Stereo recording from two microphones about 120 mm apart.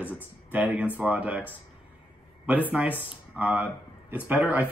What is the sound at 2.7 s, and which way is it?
Speech, 15° right (ahead or behind).